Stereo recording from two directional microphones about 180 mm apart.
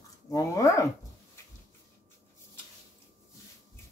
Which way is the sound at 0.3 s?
15° left (ahead or behind).